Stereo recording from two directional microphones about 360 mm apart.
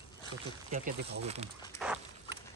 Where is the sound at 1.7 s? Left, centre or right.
Centre.